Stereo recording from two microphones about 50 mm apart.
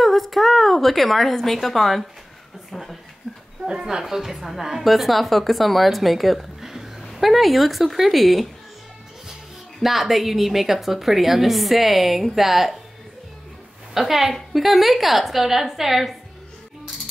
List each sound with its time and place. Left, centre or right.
0.0 s a woman's voice: centre
2.7 s a sound: centre
3.6 s speech: centre
4.0 s a woman's voice: centre
13.9 s a woman's voice: centre